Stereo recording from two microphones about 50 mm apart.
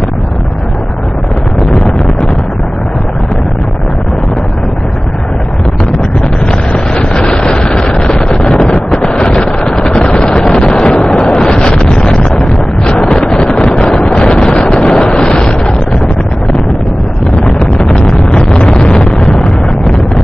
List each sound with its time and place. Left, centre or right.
1.7 s wind noise: centre
6.5 s wind noise: centre
9.1 s vehicle: centre
13.0 s wind noise: centre
17.4 s vehicle: centre